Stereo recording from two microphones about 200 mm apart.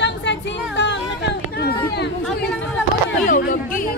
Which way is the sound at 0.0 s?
60° left (ahead or behind).